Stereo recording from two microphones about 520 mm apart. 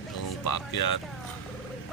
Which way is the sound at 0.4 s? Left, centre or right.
Left.